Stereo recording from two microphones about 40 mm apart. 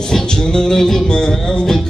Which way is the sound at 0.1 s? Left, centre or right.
Centre.